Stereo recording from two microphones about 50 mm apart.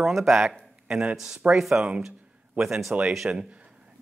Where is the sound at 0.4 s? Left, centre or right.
Centre.